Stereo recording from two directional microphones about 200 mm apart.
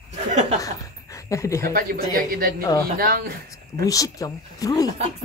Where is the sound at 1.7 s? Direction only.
45° right (ahead or behind).